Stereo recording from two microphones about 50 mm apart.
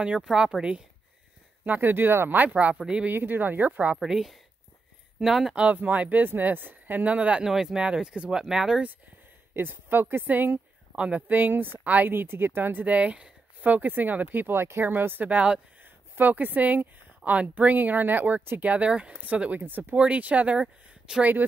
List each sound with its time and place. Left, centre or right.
0.0 s speech: centre
1.6 s speech: right
4.0 s speech: centre
5.5 s speech: centre
5.8 s speech: right
7.4 s speech: centre
9.5 s speech: right
11.0 s speech: right
12.1 s speech: right
13.6 s speech: right
15.2 s speech: right
15.8 s speech: right
18.6 s speech: right
21.2 s speech: right